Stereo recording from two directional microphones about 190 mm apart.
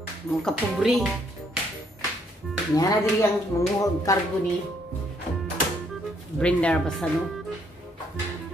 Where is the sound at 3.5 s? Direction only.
15° left (ahead or behind).